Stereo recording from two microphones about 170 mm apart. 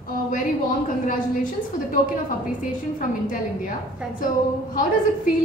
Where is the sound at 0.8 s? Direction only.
50° left (ahead or behind).